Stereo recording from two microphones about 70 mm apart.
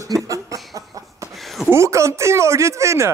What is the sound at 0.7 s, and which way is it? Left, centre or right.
Cough, right.